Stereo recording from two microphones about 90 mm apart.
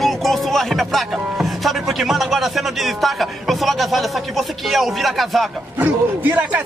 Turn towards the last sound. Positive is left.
turn(degrees=-20)  # may be behind; listen again after turning